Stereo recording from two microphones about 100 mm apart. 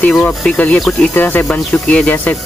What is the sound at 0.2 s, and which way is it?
Speech, 15° left (ahead or behind).